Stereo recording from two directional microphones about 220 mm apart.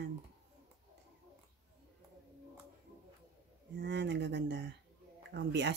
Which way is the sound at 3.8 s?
50° right (ahead or behind).